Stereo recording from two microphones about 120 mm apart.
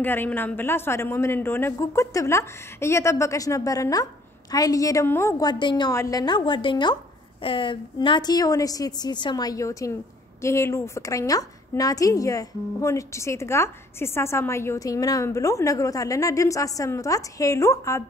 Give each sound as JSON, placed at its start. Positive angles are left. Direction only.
{"t": 0.0, "sound": "a woman's voice", "side_deg": 15}
{"t": 5.4, "sound": "a woman's voice", "side_deg": 40}